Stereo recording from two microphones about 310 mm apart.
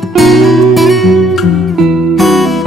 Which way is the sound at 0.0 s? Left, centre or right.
Centre.